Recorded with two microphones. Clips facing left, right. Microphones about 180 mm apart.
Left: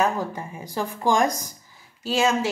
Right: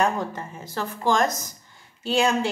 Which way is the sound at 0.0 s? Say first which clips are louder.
Even; 10° left (ahead or behind).